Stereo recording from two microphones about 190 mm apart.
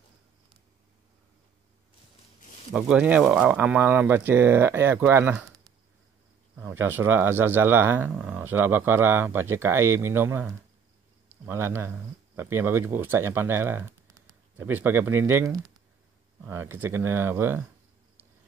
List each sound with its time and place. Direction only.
2.7 s speech: 5° right (ahead or behind)